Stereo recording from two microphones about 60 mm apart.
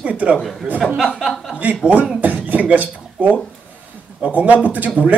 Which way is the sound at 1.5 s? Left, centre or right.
Right.